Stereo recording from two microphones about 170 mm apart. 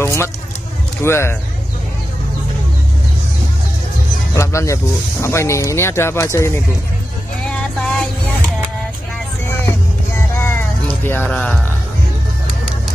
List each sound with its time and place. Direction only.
0.0 s vehicle: 15° left (ahead or behind)
1.0 s speech: 15° left (ahead or behind)
4.4 s speech: 15° left (ahead or behind)
7.4 s vehicle: 5° left (ahead or behind)
10.3 s music: 15° left (ahead or behind)
11.1 s speech: 10° left (ahead or behind)